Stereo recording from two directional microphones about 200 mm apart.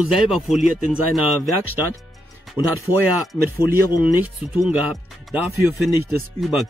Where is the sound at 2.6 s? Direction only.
25° left (ahead or behind).